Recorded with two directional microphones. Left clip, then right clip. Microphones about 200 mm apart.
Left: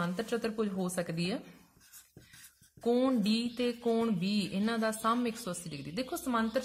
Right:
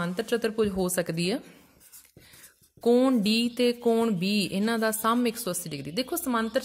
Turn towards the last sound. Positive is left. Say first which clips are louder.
# right 5 dB
turn(degrees=-40)  # may be behind; listen again after turning